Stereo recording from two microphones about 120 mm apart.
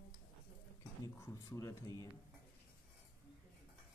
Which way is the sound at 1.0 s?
25° left (ahead or behind).